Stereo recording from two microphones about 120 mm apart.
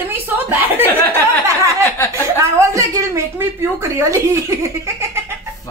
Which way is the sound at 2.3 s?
25° right (ahead or behind).